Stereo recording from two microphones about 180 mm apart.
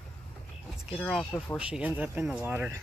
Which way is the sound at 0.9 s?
5° left (ahead or behind).